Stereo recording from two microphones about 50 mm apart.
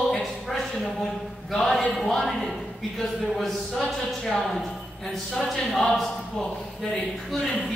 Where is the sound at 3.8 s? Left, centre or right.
Centre.